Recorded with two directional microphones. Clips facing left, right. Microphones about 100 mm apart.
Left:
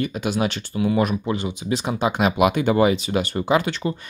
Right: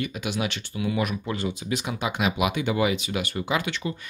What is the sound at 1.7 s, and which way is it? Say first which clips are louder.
Speech: left 9 dB; 35° left (ahead or behind).